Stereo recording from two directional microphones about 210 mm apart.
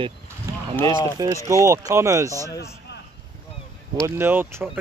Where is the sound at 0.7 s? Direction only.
10° left (ahead or behind).